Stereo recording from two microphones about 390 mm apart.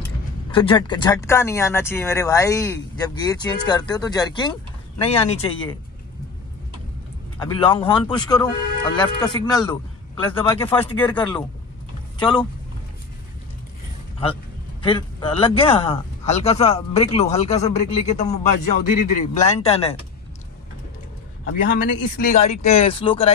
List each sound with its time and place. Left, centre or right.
0.5 s speech: centre
7.3 s speech: centre
14.8 s speech: centre
21.5 s speech: left